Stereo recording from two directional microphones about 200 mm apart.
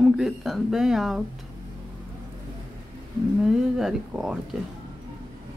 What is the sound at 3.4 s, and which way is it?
Speech, centre (ahead or behind).